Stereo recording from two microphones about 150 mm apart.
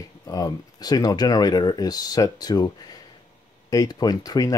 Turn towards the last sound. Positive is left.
turn(degrees=25)  # may be behind; listen again after turning